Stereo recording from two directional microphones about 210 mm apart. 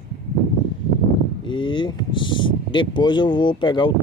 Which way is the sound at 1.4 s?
25° left (ahead or behind).